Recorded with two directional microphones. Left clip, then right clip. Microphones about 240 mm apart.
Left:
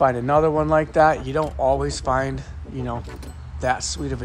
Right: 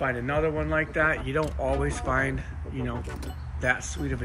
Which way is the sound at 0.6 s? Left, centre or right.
Centre.